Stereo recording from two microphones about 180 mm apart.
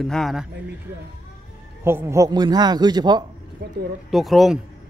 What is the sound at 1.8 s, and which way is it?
Speech, 15° right (ahead or behind).